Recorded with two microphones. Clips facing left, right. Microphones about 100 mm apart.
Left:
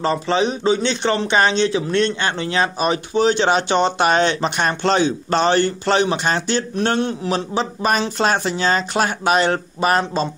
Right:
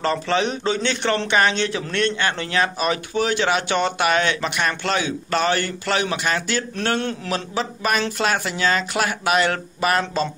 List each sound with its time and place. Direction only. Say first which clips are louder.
0.0 s a man's voice: left 2 dB; 20° left (ahead or behind)